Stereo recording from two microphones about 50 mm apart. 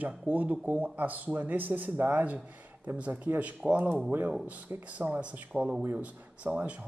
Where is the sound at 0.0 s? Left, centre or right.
Right.